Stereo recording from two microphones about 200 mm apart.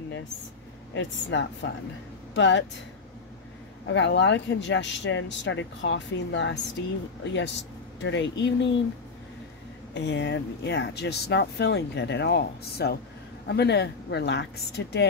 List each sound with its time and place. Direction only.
0.9 s speech: 65° left (ahead or behind)
3.8 s speech: 65° left (ahead or behind)
9.9 s speech: 60° left (ahead or behind)